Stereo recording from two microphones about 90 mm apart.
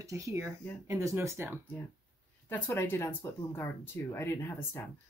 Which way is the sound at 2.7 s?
30° left (ahead or behind).